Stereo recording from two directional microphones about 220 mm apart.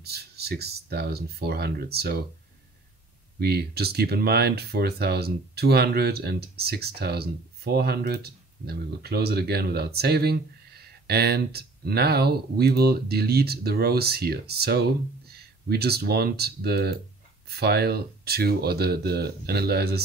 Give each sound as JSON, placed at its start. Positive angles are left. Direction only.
{"t": 0.0, "sound": "speech", "side_deg": -45}
{"t": 3.3, "sound": "speech", "side_deg": -45}